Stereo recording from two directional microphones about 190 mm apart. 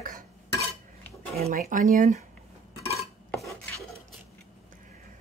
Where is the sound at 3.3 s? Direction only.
10° left (ahead or behind).